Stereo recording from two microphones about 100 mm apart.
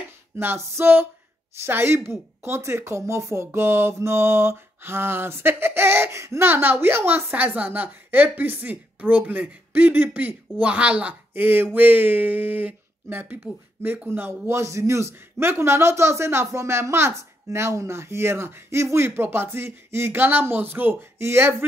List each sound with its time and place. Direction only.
0.4 s speech: 25° right (ahead or behind)